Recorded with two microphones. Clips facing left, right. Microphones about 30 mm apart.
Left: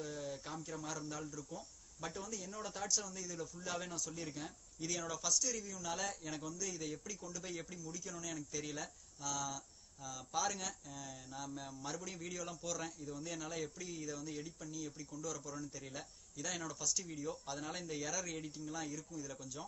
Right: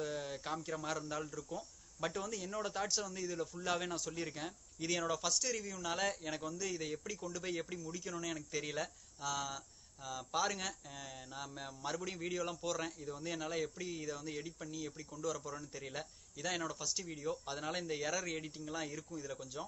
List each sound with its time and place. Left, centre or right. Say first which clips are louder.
0.0 s speech: right 4 dB; right